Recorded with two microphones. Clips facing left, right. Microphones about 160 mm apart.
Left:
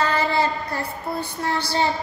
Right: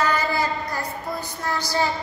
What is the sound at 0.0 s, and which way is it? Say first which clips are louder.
Child singing: left 2 dB; 30° left (ahead or behind).